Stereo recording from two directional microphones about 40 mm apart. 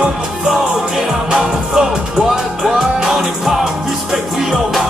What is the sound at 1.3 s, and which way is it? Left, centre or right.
Music, centre.